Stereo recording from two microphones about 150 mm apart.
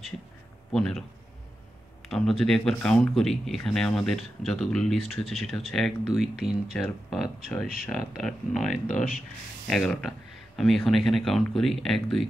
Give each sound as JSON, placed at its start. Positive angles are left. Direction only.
{"t": 0.7, "sound": "speech", "side_deg": 5}
{"t": 2.0, "sound": "speech", "side_deg": 0}
{"t": 8.8, "sound": "speech", "side_deg": 60}
{"t": 9.7, "sound": "speech", "side_deg": 0}